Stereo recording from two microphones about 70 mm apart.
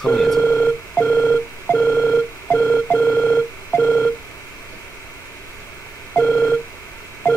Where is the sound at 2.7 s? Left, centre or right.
Left.